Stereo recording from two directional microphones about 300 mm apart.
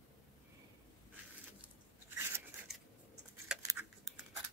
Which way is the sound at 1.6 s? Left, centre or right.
Centre.